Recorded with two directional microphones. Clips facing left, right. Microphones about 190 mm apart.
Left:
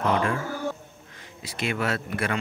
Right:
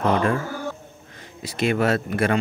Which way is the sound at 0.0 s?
40° right (ahead or behind).